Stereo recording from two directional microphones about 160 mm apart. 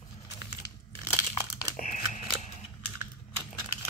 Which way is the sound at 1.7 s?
55° left (ahead or behind).